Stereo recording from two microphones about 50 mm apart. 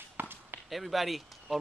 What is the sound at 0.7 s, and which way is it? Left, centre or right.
Speech, centre.